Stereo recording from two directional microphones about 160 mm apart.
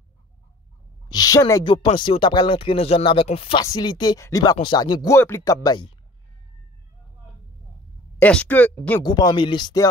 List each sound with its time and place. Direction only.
1.0 s a woman's voice: 25° left (ahead or behind)
3.6 s speech: 25° left (ahead or behind)
8.2 s speech: 10° left (ahead or behind)
9.0 s speech: 25° left (ahead or behind)